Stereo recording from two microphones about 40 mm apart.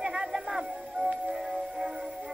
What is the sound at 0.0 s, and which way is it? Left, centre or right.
Music, centre.